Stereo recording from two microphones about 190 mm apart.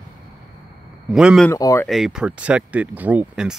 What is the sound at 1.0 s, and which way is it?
Speech, centre (ahead or behind).